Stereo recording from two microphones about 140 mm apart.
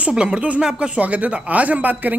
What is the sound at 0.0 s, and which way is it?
A man's voice, 5° right (ahead or behind).